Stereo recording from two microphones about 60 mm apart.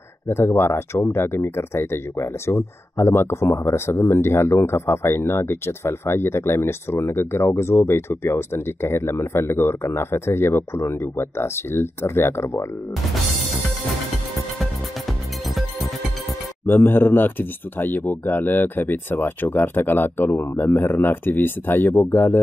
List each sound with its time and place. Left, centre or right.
0.3 s speech: left
14.6 s music: centre
16.6 s speech: left